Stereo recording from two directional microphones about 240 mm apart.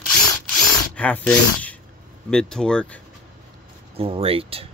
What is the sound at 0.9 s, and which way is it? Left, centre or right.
Speech, centre.